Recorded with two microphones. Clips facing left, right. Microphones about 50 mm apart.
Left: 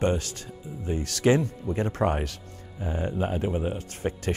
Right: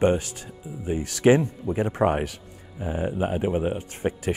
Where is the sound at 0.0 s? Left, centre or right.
Centre.